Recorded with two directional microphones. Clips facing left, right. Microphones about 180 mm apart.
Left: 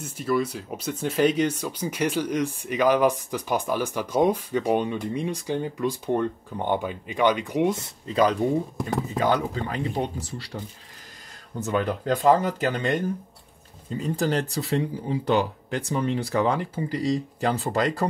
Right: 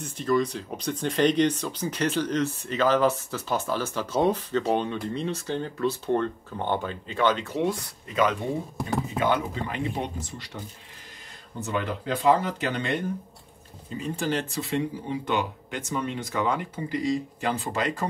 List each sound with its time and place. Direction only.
0.0 s speech: 5° left (ahead or behind); by 8.2 s 25° left (ahead or behind)
9.2 s speech: 35° left (ahead or behind)
11.6 s speech: 45° left (ahead or behind)